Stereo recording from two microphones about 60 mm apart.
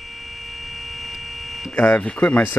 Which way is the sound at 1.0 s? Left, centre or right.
Centre.